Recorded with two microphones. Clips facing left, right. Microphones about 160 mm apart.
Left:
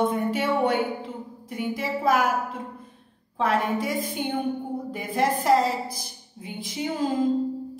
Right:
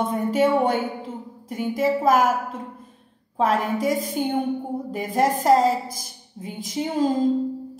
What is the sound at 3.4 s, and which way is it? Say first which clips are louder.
A woman's voice: right 2 dB; 40° right (ahead or behind).